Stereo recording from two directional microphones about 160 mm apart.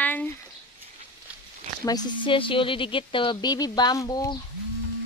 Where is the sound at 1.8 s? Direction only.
25° left (ahead or behind).